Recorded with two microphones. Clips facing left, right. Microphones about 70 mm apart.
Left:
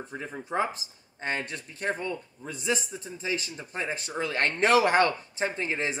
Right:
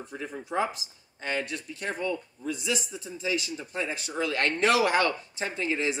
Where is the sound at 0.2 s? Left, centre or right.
Left.